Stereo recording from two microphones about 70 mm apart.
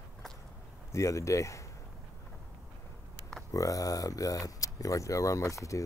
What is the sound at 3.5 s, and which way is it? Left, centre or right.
Speech, left.